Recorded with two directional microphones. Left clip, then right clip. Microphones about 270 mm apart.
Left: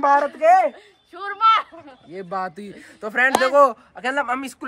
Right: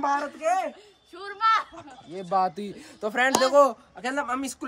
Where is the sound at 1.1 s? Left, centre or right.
Centre.